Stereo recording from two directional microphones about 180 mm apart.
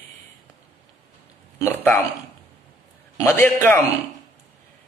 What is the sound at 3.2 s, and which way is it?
Speech, 10° left (ahead or behind).